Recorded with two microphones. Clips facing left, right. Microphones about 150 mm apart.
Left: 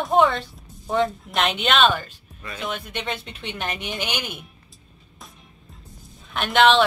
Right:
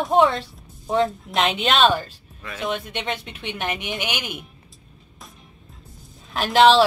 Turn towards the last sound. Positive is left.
turn(degrees=0)  # may be behind; listen again after turning